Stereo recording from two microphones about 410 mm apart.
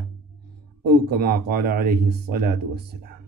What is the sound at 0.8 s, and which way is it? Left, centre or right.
Speech, right.